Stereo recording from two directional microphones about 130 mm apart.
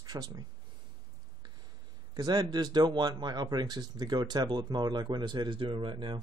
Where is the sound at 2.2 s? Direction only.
35° right (ahead or behind).